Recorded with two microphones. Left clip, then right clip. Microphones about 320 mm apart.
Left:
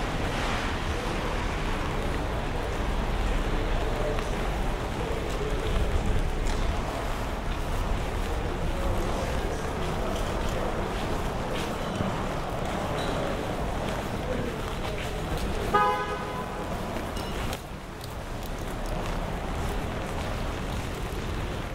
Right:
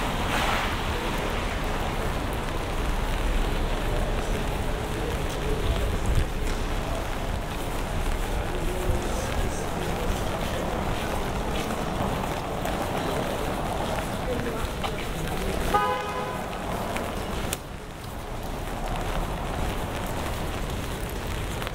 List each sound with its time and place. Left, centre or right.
15.7 s vehicle: centre